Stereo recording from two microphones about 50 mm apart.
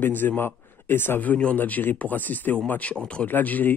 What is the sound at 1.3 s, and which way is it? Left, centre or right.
Speech, left.